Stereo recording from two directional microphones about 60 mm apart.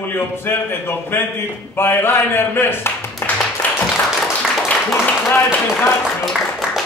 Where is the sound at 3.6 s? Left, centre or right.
Left.